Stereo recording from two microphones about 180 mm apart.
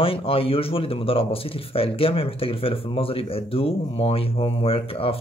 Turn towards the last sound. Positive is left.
turn(degrees=30)  # may be behind; listen again after turning